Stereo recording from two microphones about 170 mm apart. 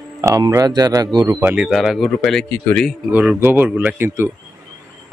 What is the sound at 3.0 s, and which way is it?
Speech, 10° right (ahead or behind).